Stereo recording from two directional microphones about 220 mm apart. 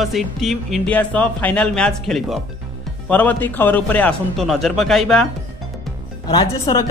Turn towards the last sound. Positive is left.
turn(degrees=20)  # may be behind; listen again after turning